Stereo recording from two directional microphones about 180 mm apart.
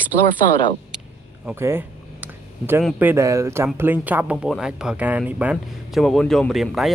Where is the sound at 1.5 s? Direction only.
15° right (ahead or behind).